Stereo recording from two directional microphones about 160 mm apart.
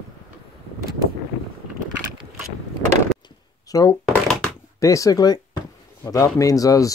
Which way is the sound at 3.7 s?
20° left (ahead or behind).